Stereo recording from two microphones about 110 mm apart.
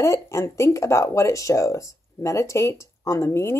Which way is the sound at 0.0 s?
25° left (ahead or behind).